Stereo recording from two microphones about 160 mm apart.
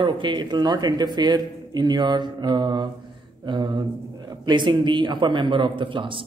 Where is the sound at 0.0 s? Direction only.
30° right (ahead or behind).